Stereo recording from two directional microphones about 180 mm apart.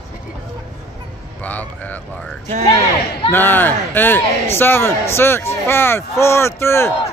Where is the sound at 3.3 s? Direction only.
10° left (ahead or behind).